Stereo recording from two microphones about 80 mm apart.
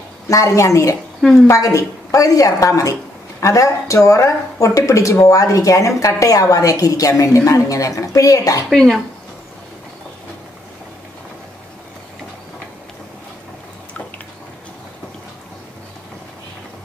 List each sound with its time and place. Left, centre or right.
0.3 s a woman's voice: left
1.2 s speech: centre
1.5 s a woman's voice: left
8.7 s speech: centre